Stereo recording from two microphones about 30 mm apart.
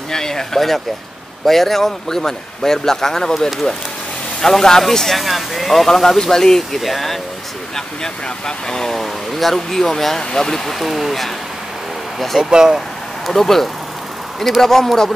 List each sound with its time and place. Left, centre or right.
0.1 s speech: centre
6.0 s speech: centre
6.8 s speech: centre
7.7 s speech: left
8.9 s speech: centre
10.7 s speech: centre
12.4 s speech: right
13.3 s speech: centre